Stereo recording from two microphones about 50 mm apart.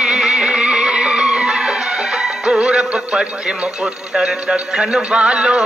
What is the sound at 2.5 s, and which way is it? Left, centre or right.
Music, centre.